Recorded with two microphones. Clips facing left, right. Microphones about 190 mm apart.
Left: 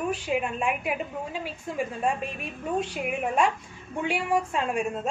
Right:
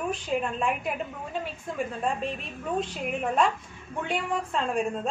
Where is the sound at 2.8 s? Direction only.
10° left (ahead or behind).